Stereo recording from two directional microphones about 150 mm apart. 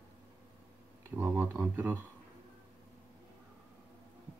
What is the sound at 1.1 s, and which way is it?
Speech, 15° right (ahead or behind).